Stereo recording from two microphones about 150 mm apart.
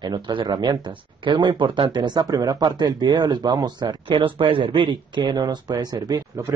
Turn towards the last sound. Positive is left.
turn(degrees=-20)  # may be behind; listen again after turning